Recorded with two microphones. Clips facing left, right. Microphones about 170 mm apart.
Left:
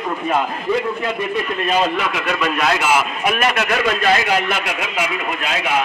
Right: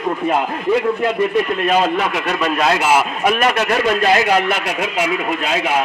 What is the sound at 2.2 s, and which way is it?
A man's voice, 30° right (ahead or behind).